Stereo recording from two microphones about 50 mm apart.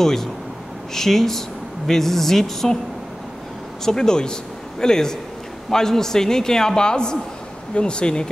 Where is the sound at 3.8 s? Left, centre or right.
Centre.